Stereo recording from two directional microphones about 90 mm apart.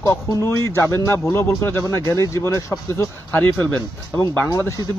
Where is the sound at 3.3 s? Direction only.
20° left (ahead or behind).